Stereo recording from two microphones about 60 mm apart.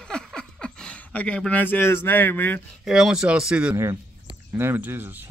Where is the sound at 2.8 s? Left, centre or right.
Centre.